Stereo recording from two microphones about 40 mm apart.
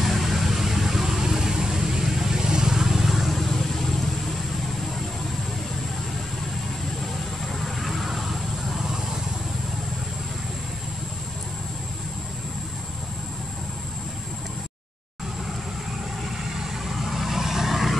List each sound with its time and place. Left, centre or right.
0.0 s vehicle: centre
7.5 s vehicle: centre
16.9 s vehicle: centre